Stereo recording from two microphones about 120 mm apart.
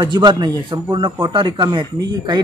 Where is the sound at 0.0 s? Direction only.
35° right (ahead or behind).